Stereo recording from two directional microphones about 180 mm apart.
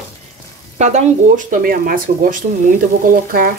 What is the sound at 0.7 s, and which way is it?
Speech, 40° right (ahead or behind).